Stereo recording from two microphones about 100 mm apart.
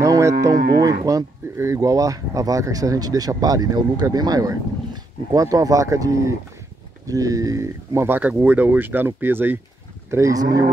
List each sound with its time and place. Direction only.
0.0 s cattle: 30° right (ahead or behind)
0.7 s speech: 40° right (ahead or behind); by 9.6 s 20° right (ahead or behind)
10.0 s speech: 30° right (ahead or behind)